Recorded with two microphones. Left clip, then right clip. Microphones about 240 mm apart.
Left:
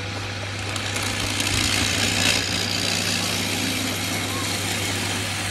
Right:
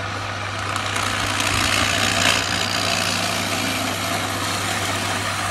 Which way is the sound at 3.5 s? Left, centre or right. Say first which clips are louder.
Right 3 dB; right.